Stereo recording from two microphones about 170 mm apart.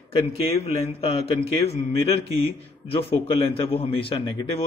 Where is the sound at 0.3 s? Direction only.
35° left (ahead or behind).